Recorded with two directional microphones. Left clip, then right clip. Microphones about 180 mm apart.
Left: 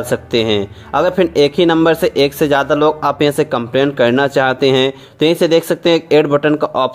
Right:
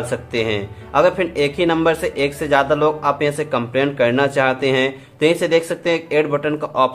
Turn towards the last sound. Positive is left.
turn(degrees=40)  # may be behind; listen again after turning